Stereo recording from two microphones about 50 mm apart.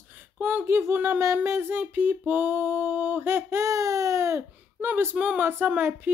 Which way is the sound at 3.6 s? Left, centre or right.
Right.